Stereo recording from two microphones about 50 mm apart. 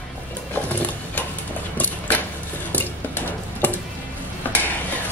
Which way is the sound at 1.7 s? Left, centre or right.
Left.